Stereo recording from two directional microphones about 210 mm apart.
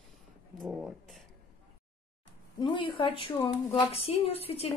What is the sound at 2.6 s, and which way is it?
Speech, 20° left (ahead or behind).